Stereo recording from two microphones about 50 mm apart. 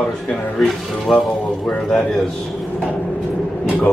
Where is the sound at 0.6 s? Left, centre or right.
Centre.